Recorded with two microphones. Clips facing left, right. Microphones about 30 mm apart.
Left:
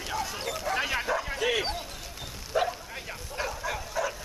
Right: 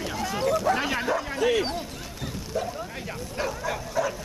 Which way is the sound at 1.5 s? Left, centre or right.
Centre.